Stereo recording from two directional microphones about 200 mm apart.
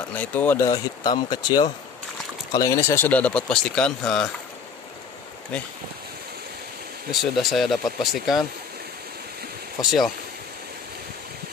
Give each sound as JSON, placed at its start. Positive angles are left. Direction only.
{"t": 0.1, "sound": "speech", "side_deg": 10}
{"t": 5.5, "sound": "speech", "side_deg": 5}
{"t": 7.1, "sound": "speech", "side_deg": 0}
{"t": 9.8, "sound": "speech", "side_deg": 0}